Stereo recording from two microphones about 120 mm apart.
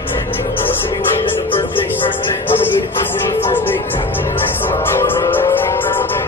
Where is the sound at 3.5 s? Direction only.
15° left (ahead or behind).